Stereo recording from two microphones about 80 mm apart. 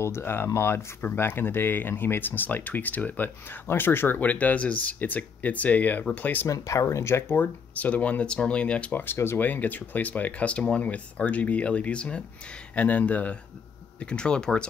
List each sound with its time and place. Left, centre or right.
0.0 s speech: left
6.4 s speech: left; by 9.0 s centre
9.0 s speech: left; by 14.7 s centre